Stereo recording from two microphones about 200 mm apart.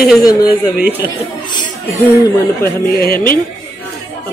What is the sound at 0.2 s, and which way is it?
Speech, 20° left (ahead or behind).